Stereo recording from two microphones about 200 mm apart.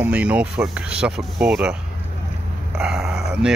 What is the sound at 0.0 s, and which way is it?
Speech, 5° right (ahead or behind).